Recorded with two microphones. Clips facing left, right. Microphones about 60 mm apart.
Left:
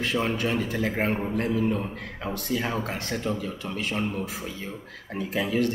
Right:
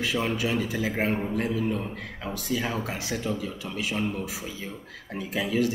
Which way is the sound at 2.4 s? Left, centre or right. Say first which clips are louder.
Even; centre.